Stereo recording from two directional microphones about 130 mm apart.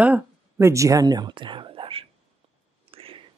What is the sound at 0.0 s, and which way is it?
Speech, 15° right (ahead or behind).